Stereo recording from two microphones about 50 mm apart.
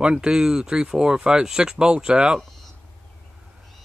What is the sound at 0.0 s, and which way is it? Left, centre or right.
Speech, centre.